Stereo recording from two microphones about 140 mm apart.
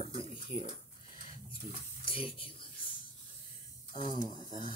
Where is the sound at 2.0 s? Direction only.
40° left (ahead or behind).